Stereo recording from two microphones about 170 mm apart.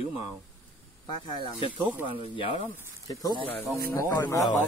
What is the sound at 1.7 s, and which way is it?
Speech, 30° left (ahead or behind).